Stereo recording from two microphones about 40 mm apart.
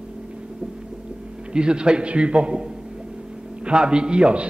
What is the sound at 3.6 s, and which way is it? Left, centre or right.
Speech, right.